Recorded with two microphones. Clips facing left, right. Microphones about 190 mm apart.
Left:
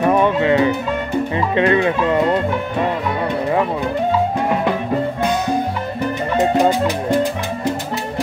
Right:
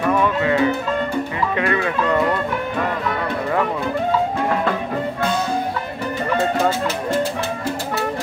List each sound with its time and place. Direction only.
0.1 s music: 25° left (ahead or behind)
1.6 s music: 25° left (ahead or behind)
6.3 s music: 15° left (ahead or behind)